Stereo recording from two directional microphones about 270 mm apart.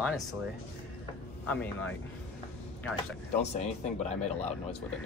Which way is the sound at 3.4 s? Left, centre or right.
Left.